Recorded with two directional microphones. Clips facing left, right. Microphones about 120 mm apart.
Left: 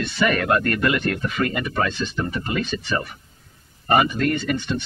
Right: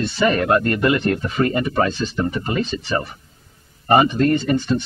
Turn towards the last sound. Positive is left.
turn(degrees=-35)  # may be behind; listen again after turning